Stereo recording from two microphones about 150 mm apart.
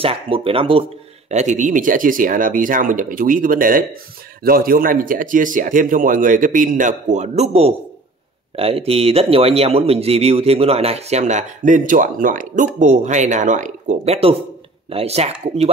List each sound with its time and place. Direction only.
0.0 s speech: 40° right (ahead or behind)
1.3 s speech: 50° right (ahead or behind)
8.5 s speech: 40° right (ahead or behind)